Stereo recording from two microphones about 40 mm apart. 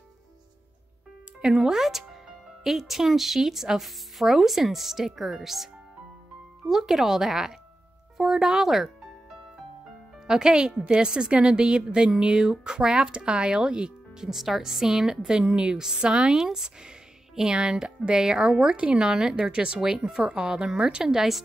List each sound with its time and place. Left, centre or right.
1.5 s speech: centre
6.7 s speech: centre
10.2 s speech: centre
14.3 s speech: centre; by 16.3 s right
16.3 s speech: centre